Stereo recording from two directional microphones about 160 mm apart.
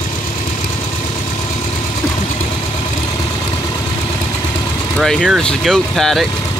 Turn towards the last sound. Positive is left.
turn(degrees=0)  # may be behind; listen again after turning